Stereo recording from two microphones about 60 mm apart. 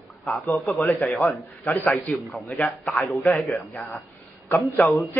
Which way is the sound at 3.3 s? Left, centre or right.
Left.